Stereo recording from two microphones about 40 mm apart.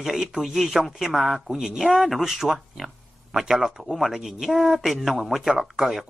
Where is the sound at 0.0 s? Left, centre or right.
Centre.